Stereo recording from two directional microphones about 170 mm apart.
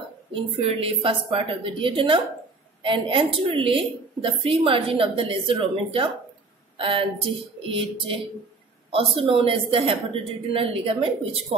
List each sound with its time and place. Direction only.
0.3 s a woman's voice: 35° right (ahead or behind)